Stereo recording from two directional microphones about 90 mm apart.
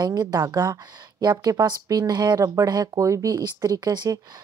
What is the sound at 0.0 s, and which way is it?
Speech, 50° right (ahead or behind).